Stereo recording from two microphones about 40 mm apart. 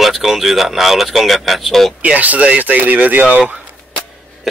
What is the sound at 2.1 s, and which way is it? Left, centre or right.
Speech, right.